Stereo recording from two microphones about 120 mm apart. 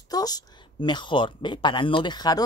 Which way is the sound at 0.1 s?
35° left (ahead or behind).